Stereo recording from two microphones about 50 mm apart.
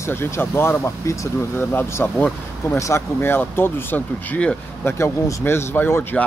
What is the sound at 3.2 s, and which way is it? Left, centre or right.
Speech, left.